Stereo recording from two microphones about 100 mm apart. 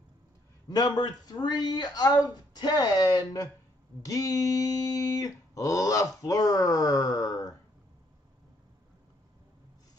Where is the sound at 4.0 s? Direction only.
35° left (ahead or behind).